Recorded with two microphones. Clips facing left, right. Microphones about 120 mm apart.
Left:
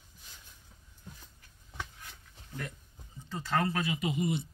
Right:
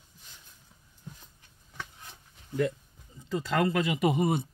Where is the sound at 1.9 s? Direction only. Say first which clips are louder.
Right 1 dB; 25° right (ahead or behind).